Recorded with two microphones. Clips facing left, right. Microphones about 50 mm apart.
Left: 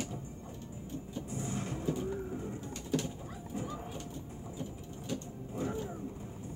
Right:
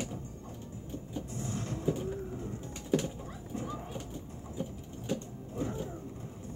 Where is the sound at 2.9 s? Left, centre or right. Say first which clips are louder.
Right 4 dB; centre.